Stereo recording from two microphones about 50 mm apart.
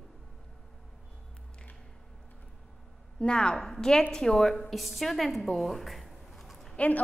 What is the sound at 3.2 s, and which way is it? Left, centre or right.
A woman's voice, centre.